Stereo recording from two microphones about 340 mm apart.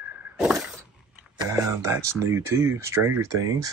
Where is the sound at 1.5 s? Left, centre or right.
Centre.